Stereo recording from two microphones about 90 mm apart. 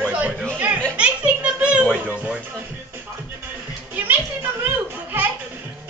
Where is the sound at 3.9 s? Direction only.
20° right (ahead or behind).